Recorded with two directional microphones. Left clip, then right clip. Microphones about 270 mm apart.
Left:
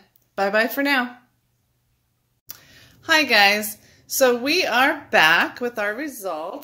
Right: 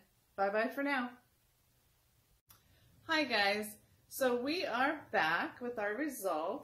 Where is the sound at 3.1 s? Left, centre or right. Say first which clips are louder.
Left 16 dB; left.